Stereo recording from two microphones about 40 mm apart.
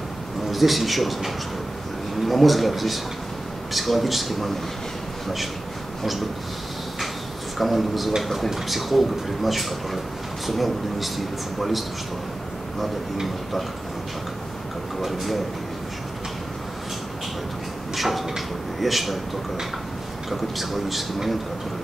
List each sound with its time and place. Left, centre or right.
0.5 s speech: centre
7.5 s speech: centre
12.8 s speech: centre
15.0 s speech: centre
17.9 s a sound: centre
20.2 s speech: centre